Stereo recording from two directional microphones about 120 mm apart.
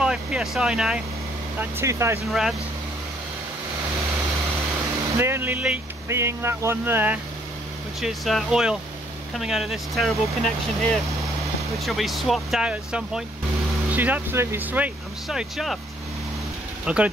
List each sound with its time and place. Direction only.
0.0 s speech: 5° right (ahead or behind)
1.6 s speech: 20° right (ahead or behind)
5.1 s speech: 20° right (ahead or behind)
8.0 s speech: centre (ahead or behind)
15.2 s speech: centre (ahead or behind)
16.8 s speech: 10° right (ahead or behind)